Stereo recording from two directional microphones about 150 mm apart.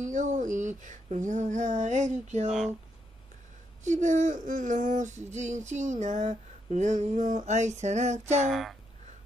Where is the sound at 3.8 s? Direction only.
55° right (ahead or behind).